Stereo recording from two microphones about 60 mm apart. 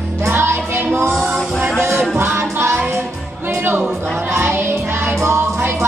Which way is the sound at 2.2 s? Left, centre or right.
Right.